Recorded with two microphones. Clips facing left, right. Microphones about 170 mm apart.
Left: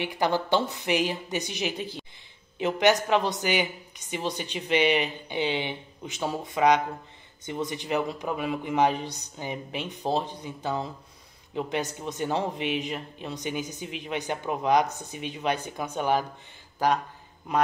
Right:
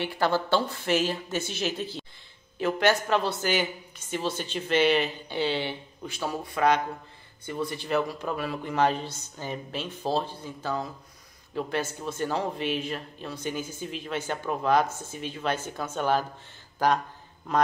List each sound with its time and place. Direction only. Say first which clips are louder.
0.0 s a woman's voice: even; 15° left (ahead or behind)